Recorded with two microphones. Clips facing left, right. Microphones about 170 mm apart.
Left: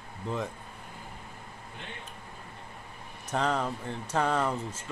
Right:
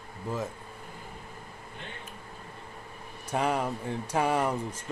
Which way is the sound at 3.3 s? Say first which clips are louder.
Right 1 dB; 10° right (ahead or behind).